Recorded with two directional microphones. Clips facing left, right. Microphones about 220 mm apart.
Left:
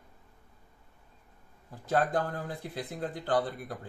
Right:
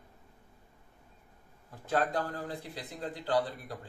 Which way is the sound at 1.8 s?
50° left (ahead or behind).